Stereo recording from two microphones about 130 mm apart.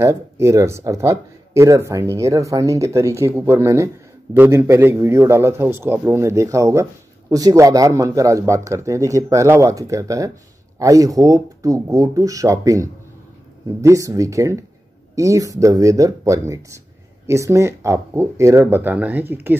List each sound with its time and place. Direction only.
0.0 s speech: 20° right (ahead or behind)